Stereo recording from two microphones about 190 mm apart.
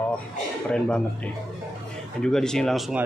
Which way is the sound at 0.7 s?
5° left (ahead or behind).